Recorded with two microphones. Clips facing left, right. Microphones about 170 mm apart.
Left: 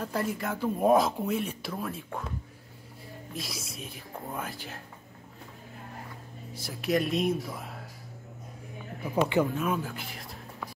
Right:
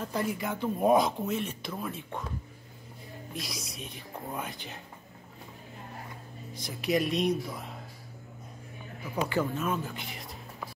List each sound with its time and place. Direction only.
0.0 s speech: centre (ahead or behind)
3.3 s speech: centre (ahead or behind)
6.5 s speech: 5° left (ahead or behind)
9.0 s speech: 30° left (ahead or behind)
9.4 s speech: 10° left (ahead or behind)